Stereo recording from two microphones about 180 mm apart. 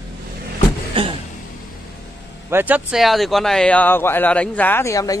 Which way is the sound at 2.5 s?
10° right (ahead or behind).